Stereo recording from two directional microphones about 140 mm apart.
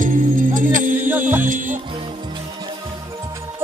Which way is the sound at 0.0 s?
70° right (ahead or behind).